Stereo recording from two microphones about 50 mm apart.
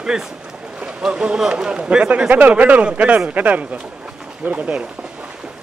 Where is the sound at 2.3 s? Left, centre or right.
Right.